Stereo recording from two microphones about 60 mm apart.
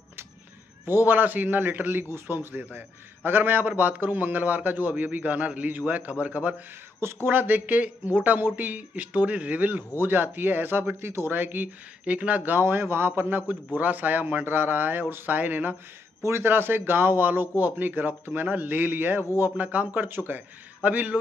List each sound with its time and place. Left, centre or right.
0.8 s a man's voice: right
2.0 s a man's voice: right
2.3 s a man's voice: right
7.0 s a man's voice: right
12.0 s a man's voice: right
12.6 s a man's voice: right
16.2 s a man's voice: right